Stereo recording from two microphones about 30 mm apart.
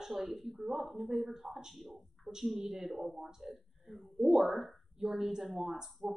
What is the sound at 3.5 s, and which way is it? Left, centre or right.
Speech, centre.